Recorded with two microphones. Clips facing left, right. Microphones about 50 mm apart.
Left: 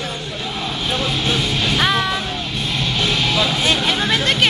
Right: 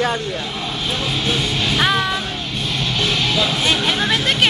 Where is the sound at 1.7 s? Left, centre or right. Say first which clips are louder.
Right 1 dB; centre.